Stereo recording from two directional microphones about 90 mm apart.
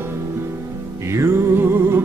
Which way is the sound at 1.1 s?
30° right (ahead or behind).